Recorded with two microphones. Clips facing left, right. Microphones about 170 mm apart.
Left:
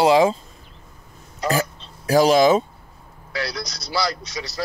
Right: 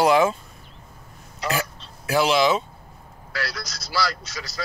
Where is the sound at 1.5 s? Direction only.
40° left (ahead or behind).